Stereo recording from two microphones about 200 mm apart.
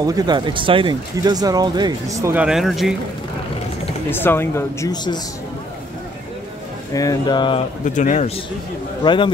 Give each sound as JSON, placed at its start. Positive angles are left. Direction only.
{"t": 0.0, "sound": "speech", "side_deg": -20}
{"t": 4.1, "sound": "speech", "side_deg": 10}
{"t": 6.9, "sound": "speech", "side_deg": 15}
{"t": 7.8, "sound": "speech", "side_deg": 40}
{"t": 9.0, "sound": "speech", "side_deg": 25}